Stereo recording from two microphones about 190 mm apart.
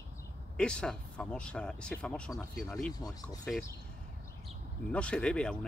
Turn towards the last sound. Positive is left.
turn(degrees=5)  # may be behind; listen again after turning